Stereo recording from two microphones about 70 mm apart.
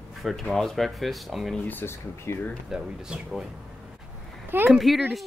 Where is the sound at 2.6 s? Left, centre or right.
Centre.